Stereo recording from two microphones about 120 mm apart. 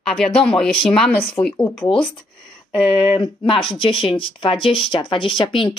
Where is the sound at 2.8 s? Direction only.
45° left (ahead or behind).